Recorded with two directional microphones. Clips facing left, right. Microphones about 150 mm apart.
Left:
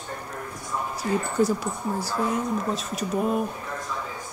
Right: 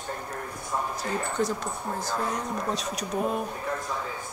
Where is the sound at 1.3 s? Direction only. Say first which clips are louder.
Left 5 dB; 10° left (ahead or behind).